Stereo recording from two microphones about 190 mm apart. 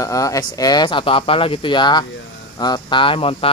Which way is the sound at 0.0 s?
20° left (ahead or behind).